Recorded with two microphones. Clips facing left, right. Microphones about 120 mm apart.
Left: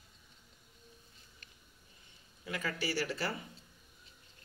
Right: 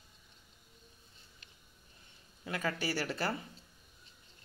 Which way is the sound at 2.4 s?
40° right (ahead or behind).